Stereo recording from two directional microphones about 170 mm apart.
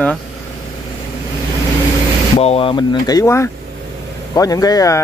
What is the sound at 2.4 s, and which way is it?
Speech, 35° left (ahead or behind).